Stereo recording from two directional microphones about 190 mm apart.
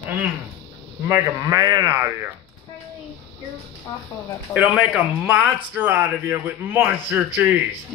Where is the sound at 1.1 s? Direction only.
20° right (ahead or behind).